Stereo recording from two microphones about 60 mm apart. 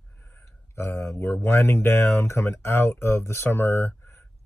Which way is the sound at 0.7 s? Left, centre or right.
Left.